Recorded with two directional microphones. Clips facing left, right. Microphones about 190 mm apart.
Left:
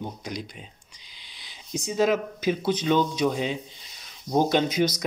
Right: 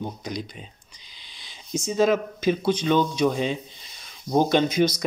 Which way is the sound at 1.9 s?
15° left (ahead or behind).